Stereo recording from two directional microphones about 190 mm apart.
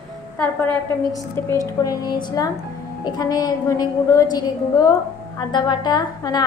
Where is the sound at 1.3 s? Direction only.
15° left (ahead or behind).